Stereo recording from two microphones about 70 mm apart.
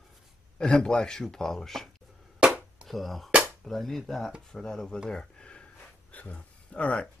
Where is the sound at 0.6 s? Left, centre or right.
Centre.